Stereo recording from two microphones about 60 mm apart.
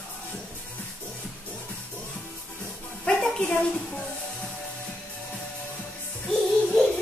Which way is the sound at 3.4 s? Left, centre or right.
Left.